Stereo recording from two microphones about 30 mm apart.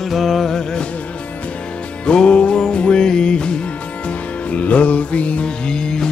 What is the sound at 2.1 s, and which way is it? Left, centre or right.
Music, left.